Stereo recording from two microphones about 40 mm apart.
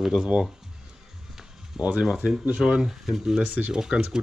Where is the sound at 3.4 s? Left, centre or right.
Right.